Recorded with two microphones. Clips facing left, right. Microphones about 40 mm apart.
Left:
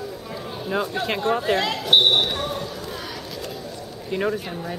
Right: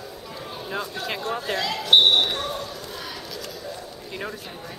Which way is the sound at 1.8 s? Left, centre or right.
Centre.